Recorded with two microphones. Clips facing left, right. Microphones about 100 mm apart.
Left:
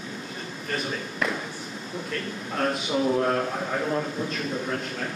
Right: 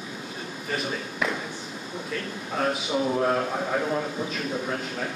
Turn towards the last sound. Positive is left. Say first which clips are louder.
# even
turn(degrees=-5)  # may be behind; listen again after turning